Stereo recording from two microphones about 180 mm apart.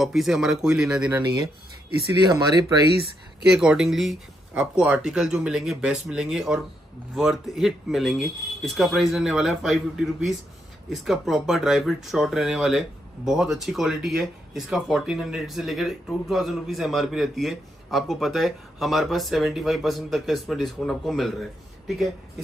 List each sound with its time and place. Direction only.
0.0 s speech: centre (ahead or behind)
2.2 s speech: 20° right (ahead or behind)
3.4 s speech: 5° right (ahead or behind)